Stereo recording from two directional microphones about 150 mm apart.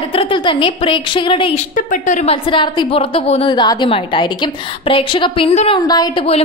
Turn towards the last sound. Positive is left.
turn(degrees=25)  # may be behind; listen again after turning